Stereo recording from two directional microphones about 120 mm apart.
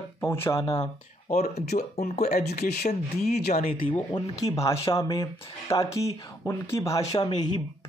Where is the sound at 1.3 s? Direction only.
65° left (ahead or behind).